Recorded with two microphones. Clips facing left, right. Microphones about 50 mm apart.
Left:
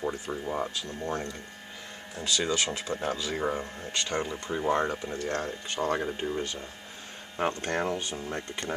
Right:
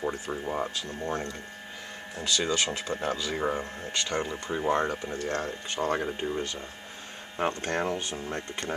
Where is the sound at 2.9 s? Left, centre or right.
Centre.